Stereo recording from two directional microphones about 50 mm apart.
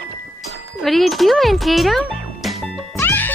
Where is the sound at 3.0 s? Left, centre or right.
Left.